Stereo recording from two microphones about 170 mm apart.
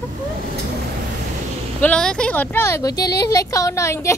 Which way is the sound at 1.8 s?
5° left (ahead or behind).